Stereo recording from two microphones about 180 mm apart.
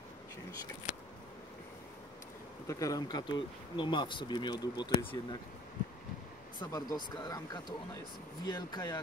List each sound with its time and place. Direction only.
2.6 s speech: 20° left (ahead or behind)
6.6 s speech: 20° left (ahead or behind)